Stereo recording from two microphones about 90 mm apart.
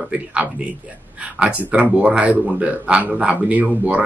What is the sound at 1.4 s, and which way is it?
A man's voice, 10° right (ahead or behind).